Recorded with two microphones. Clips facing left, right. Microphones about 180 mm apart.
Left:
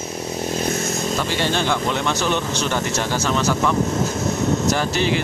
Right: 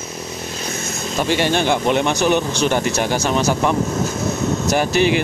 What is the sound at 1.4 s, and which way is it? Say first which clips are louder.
Speech: right 3 dB; 15° right (ahead or behind).